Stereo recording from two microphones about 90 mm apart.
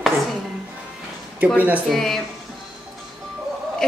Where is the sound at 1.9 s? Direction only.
5° left (ahead or behind).